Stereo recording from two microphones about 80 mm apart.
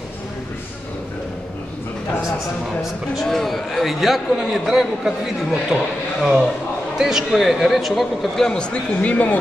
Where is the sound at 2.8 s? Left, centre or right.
Centre.